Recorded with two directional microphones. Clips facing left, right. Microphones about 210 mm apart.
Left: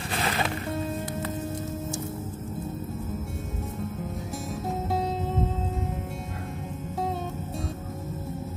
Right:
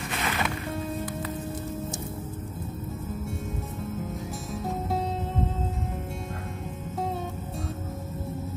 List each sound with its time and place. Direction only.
0.1 s music: 30° left (ahead or behind)